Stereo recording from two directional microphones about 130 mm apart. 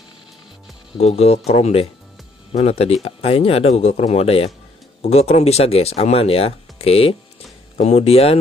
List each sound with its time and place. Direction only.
0.9 s speech: 55° left (ahead or behind)